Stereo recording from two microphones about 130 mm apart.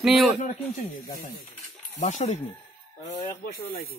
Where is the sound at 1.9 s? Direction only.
70° left (ahead or behind).